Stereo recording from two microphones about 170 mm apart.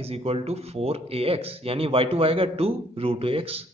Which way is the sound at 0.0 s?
35° right (ahead or behind).